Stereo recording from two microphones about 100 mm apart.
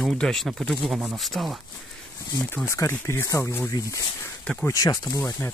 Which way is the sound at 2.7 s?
30° left (ahead or behind).